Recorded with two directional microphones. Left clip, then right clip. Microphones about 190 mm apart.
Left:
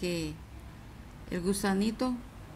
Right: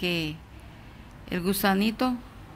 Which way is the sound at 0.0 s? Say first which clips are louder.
Right 6 dB; 20° right (ahead or behind).